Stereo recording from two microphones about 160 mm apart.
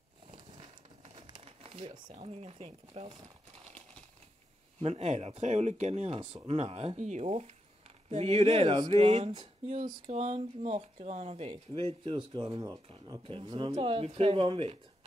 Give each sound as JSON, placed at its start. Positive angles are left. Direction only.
{"t": 1.1, "sound": "speech", "side_deg": -35}
{"t": 4.7, "sound": "speech", "side_deg": -40}